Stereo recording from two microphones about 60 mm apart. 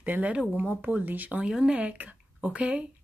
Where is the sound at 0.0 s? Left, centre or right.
Right.